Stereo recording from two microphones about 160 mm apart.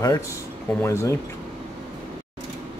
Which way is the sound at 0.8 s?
15° left (ahead or behind).